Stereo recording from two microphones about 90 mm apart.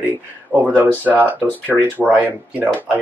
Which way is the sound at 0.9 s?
20° left (ahead or behind).